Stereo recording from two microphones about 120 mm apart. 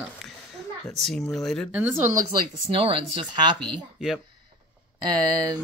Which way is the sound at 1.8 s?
15° right (ahead or behind).